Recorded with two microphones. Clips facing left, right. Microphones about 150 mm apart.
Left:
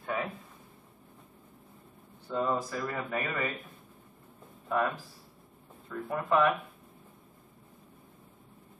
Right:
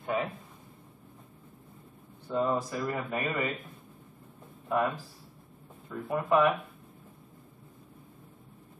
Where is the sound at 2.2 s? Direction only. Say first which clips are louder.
Right 2 dB; 15° right (ahead or behind).